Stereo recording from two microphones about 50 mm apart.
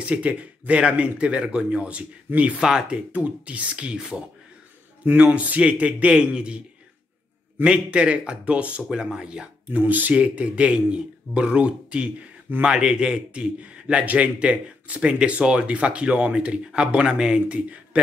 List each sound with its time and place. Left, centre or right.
0.0 s a man's voice: right
3.1 s a man's voice: right
7.6 s a man's voice: right
9.7 s a man's voice: right; by 17.6 s centre